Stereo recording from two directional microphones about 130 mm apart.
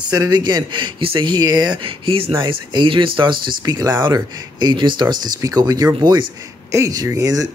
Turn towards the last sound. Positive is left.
turn(degrees=-25)  # may be behind; listen again after turning